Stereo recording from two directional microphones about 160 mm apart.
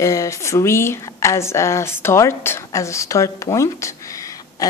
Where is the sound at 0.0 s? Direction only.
20° left (ahead or behind).